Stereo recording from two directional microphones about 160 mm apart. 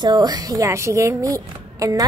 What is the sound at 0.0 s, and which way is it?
A woman's voice, 25° right (ahead or behind).